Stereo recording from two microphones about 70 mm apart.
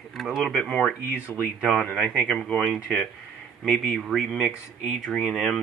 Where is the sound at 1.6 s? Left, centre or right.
Centre.